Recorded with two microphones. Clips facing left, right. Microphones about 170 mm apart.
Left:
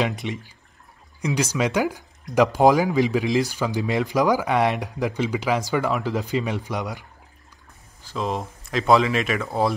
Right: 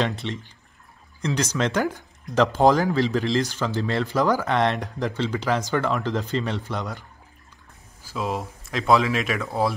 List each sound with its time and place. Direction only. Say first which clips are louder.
0.0 s speech: left 1 dB; 15° left (ahead or behind)
1.5 s speech: left 1 dB; 10° left (ahead or behind)
8.0 s speech: left 1 dB; 5° right (ahead or behind)